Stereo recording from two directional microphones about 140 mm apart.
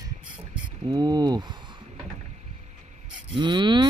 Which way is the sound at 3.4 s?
35° right (ahead or behind).